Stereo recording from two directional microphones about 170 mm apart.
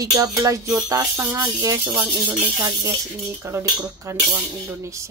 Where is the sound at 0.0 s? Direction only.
20° right (ahead or behind).